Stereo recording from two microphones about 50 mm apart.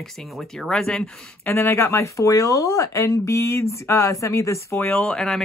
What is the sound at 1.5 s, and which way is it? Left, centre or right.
Speech, left.